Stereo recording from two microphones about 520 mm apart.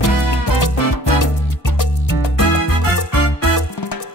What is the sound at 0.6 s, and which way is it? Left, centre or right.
Music, left.